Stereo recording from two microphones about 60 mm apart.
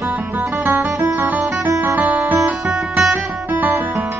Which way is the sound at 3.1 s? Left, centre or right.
Right.